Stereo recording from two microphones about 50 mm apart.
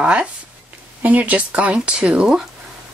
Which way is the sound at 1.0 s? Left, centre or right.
Right.